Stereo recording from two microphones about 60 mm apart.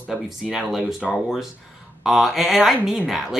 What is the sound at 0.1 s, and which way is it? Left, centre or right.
Speech, centre.